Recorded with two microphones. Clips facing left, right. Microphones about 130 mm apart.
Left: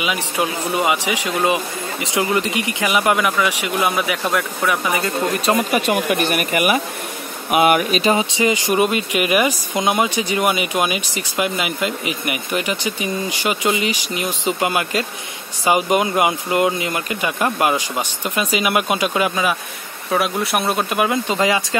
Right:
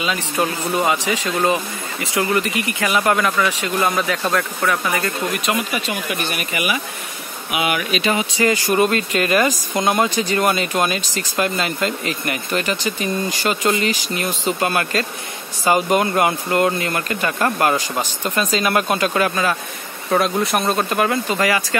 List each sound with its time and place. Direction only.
0.0 s speech: 15° left (ahead or behind)
5.3 s speech: 35° left (ahead or behind)
5.7 s speech: 55° left (ahead or behind)
8.1 s speech: 25° left (ahead or behind)